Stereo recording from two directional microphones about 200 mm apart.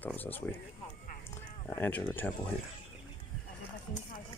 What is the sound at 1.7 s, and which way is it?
Speech, 10° left (ahead or behind).